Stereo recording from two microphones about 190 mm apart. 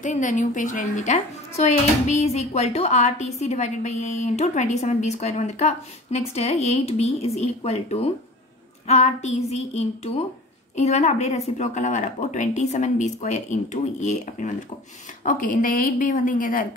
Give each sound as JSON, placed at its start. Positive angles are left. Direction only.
{"t": 0.0, "sound": "a woman's voice", "side_deg": 40}